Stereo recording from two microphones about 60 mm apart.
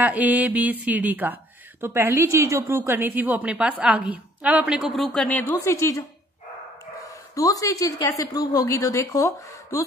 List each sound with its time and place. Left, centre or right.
0.0 s a woman's voice: right
1.8 s a woman's voice: right
2.1 s a woman's voice: right
2.9 s a woman's voice: right
4.6 s speech: centre
5.6 s a woman's voice: left
7.0 s speech: left
8.2 s a woman's voice: left